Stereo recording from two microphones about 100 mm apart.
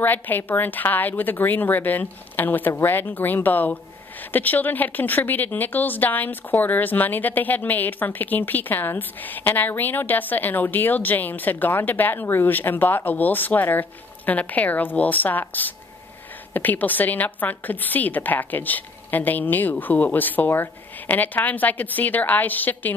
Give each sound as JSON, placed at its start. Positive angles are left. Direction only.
{"t": 0.0, "sound": "a woman's voice", "side_deg": 20}